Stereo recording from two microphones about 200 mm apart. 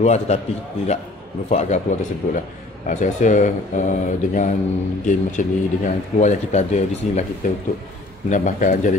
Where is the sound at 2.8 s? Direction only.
40° left (ahead or behind).